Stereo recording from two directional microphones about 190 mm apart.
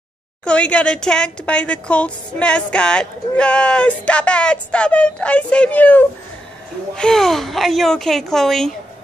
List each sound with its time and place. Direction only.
0.5 s a woman's voice: 5° left (ahead or behind)